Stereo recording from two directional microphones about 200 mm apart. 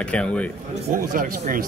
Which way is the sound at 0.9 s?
45° right (ahead or behind).